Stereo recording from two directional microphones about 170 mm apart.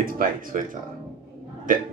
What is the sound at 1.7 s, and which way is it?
Speech, 55° right (ahead or behind).